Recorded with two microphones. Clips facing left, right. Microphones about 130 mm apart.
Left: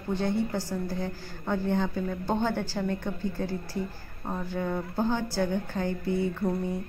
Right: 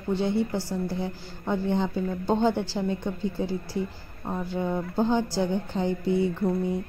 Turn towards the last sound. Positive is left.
turn(degrees=-15)  # may be behind; listen again after turning